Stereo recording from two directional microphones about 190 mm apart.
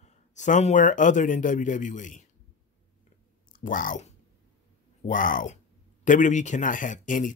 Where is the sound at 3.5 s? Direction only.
45° left (ahead or behind).